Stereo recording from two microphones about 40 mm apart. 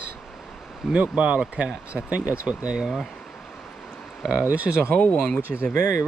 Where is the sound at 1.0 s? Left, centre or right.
Right.